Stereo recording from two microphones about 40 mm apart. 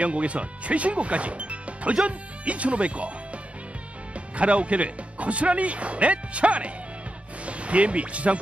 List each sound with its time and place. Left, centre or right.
0.0 s speech: right
4.1 s speech: right